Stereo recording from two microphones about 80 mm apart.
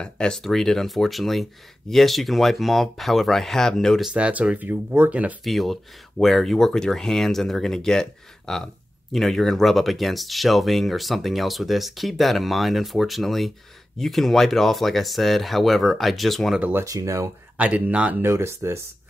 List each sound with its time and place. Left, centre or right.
0.0 s speech: centre
4.1 s speech: centre
5.4 s speech: centre
16.8 s speech: right
17.6 s speech: centre
18.2 s speech: right